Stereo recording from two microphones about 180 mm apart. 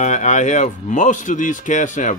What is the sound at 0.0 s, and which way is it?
Speech, 40° left (ahead or behind).